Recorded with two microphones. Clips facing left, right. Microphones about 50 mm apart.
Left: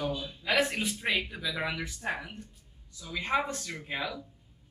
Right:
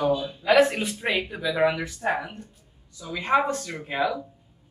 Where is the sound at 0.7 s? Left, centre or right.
Right.